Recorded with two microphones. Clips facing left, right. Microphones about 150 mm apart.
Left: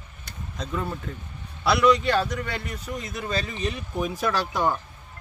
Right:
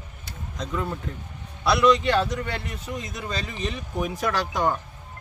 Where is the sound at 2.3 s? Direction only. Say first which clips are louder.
Right 1 dB; 25° right (ahead or behind).